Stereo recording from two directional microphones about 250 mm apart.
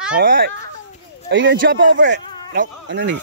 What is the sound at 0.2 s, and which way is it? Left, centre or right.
Speech, right.